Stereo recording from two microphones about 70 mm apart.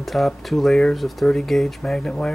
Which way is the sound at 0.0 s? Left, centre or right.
Centre.